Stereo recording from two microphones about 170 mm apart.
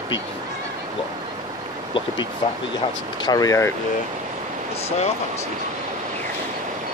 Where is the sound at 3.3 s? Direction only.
20° left (ahead or behind).